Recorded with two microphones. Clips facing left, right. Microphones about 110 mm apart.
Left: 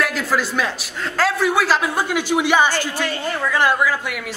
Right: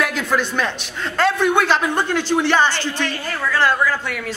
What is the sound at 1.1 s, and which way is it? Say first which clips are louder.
A man's voice: right 2 dB; centre (ahead or behind).